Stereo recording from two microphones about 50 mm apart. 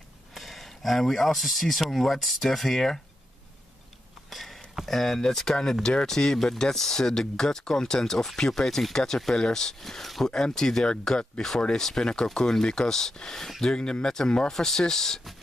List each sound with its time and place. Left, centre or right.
0.3 s speech: centre
4.3 s a sound: centre
4.8 s speech: centre